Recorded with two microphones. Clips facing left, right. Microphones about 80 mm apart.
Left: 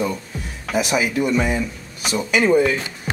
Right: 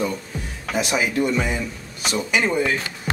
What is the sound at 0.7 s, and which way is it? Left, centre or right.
Speech, centre.